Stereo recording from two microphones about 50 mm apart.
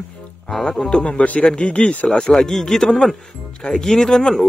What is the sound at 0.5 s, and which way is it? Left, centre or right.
Speech, centre.